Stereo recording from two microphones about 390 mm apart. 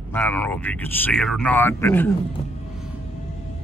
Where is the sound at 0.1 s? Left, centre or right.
Centre.